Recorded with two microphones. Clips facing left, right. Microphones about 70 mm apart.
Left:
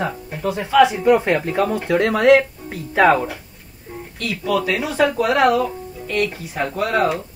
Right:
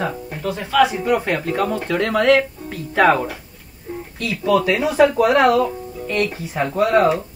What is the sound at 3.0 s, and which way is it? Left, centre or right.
Speech, centre.